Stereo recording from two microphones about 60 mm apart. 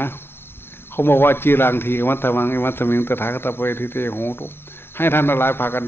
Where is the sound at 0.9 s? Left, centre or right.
Left.